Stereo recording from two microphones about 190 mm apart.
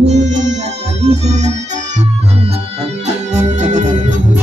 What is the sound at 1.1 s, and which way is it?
Organ, 35° right (ahead or behind).